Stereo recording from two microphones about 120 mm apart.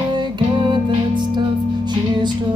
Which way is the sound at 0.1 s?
40° right (ahead or behind).